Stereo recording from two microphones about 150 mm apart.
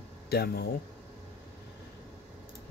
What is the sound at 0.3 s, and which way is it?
Speech, 90° left.